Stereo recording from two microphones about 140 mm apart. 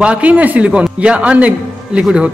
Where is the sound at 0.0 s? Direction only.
10° right (ahead or behind).